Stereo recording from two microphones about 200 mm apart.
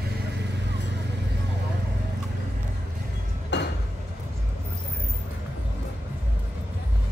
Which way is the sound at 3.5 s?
60° left (ahead or behind).